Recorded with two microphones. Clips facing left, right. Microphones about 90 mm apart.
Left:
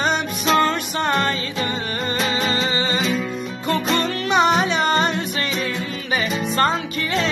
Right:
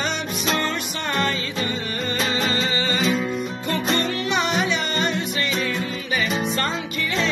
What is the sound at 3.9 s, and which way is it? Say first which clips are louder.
Music: left 2 dB; 40° left (ahead or behind).